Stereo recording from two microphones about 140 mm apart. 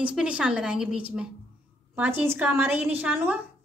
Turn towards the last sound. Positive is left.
turn(degrees=-10)  # may be behind; listen again after turning